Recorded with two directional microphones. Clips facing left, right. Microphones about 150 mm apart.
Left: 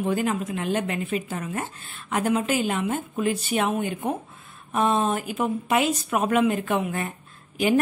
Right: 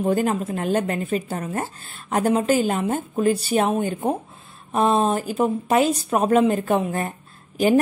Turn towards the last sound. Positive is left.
turn(degrees=-40)  # may be behind; listen again after turning